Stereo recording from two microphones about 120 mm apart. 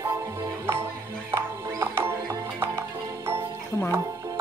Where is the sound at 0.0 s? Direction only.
25° right (ahead or behind).